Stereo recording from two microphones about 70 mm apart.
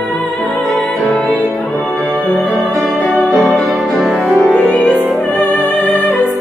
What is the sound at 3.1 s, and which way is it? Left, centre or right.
Music, centre.